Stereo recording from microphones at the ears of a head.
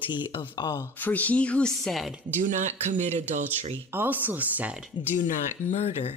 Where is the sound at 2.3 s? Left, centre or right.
Right.